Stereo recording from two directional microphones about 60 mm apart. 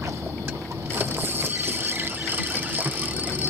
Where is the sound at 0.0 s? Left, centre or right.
Right.